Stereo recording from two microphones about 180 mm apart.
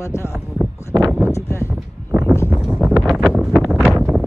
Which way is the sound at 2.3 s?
15° left (ahead or behind).